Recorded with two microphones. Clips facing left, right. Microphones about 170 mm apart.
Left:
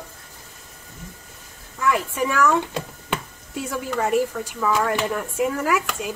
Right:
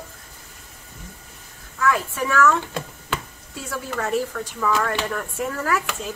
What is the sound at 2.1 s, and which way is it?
Speech, 15° left (ahead or behind).